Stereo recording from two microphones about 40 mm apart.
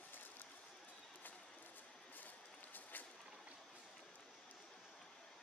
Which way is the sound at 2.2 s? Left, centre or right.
Left.